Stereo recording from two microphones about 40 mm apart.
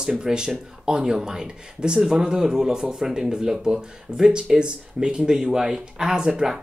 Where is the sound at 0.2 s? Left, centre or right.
Centre.